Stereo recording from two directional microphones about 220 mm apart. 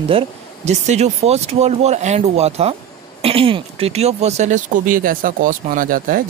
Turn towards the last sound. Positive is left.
turn(degrees=-40)  # may be behind; listen again after turning